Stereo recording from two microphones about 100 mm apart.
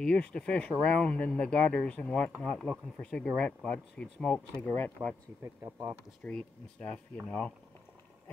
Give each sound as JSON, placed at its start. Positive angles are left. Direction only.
{"t": 0.0, "sound": "speech", "side_deg": 10}
{"t": 5.4, "sound": "speech", "side_deg": -25}
{"t": 6.2, "sound": "speech", "side_deg": 15}